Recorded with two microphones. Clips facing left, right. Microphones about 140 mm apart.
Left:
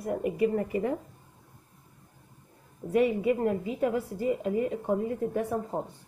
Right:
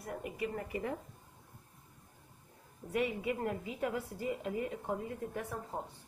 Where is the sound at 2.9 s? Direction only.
35° left (ahead or behind).